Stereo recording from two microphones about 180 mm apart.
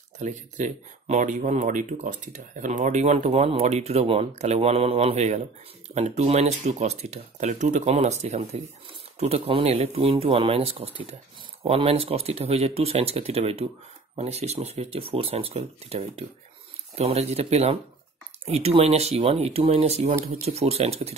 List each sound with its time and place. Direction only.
0.2 s speech: 40° right (ahead or behind)